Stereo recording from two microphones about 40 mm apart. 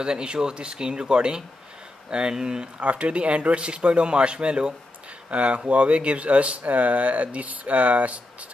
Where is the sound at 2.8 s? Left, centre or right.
Right.